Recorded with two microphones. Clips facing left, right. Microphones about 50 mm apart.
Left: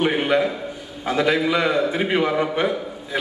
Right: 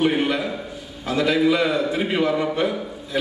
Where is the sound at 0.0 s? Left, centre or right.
Centre.